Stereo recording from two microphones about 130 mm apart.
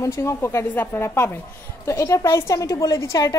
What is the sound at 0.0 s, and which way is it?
A woman's voice, 20° left (ahead or behind).